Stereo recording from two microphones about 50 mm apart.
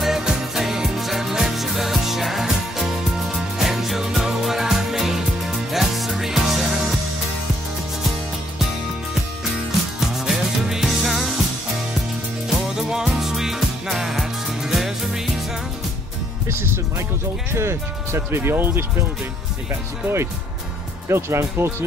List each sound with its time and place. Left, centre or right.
0.0 s music: centre
9.9 s music: centre
12.6 s music: centre
16.4 s music: right
17.5 s speech: right